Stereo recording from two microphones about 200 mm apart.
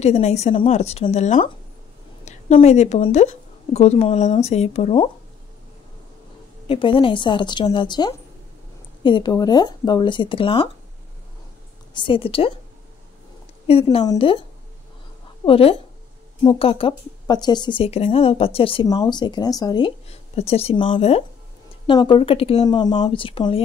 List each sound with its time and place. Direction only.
0.0 s a woman's voice: 35° left (ahead or behind)
6.7 s a woman's voice: 25° left (ahead or behind)
11.9 s a woman's voice: 25° left (ahead or behind)
13.7 s a woman's voice: 30° left (ahead or behind)
15.4 s a woman's voice: 30° left (ahead or behind)